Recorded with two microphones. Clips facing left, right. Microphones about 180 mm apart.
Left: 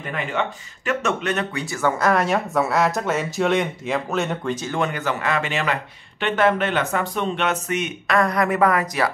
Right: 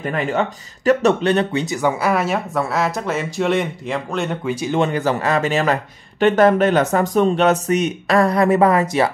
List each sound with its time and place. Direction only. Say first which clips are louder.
0.0 s speech: right 5 dB; 40° right (ahead or behind); by 4.6 s centre (ahead or behind)
4.7 s speech: right 8 dB; 30° right (ahead or behind)